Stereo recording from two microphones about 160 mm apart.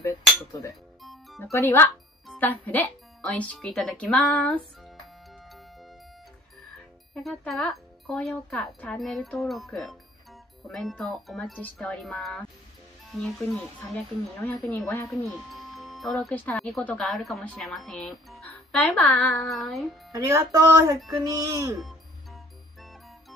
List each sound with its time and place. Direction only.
0.0 s speech: 20° left (ahead or behind)
1.0 s music: centre (ahead or behind)
1.4 s speech: 15° left (ahead or behind)
7.2 s speech: centre (ahead or behind)
15.0 s speech: centre (ahead or behind)
20.1 s speech: 20° right (ahead or behind)
21.7 s music: centre (ahead or behind)